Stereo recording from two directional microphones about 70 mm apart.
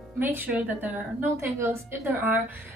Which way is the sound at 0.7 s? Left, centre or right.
Right.